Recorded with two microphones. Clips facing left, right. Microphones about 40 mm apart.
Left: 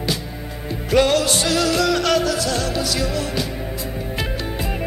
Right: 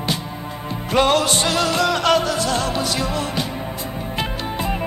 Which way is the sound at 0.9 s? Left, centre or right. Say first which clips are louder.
Even; centre.